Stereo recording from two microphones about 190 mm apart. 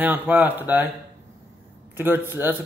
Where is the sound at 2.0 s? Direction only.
10° right (ahead or behind).